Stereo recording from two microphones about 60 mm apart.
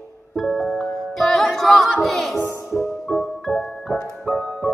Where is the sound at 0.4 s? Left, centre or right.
Centre.